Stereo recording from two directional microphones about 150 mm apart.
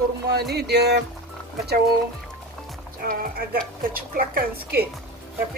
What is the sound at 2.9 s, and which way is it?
A woman's voice, 75° right (ahead or behind).